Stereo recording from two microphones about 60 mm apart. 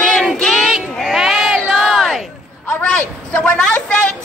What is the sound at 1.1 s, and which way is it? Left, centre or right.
Crowd, centre.